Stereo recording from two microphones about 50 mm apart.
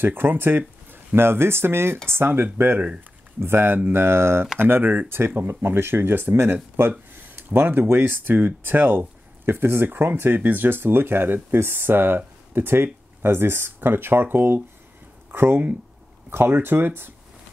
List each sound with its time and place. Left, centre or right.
0.0 s speech: right
6.9 s speech: right